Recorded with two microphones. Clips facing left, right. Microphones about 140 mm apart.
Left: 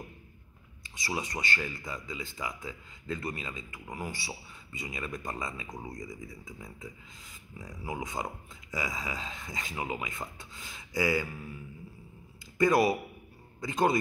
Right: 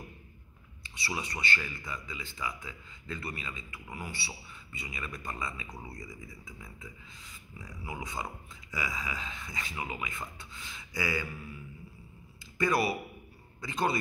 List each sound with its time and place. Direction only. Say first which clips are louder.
0.8 s speech: left 2 dB; 45° left (ahead or behind)
12.5 s a man's voice: left 4 dB; 45° left (ahead or behind)